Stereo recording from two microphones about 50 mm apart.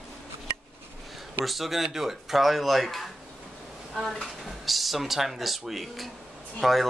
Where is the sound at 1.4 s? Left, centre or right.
Centre.